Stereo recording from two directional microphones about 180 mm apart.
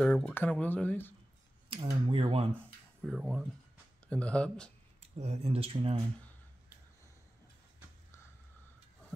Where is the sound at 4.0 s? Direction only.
5° left (ahead or behind).